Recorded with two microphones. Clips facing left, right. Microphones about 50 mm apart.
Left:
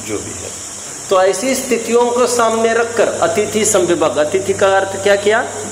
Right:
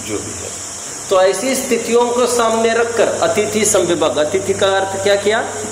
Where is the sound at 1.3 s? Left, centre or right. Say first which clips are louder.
Left 1 dB; left.